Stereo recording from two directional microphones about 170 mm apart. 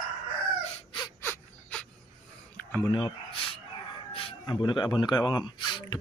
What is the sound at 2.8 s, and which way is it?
Speech, 25° left (ahead or behind).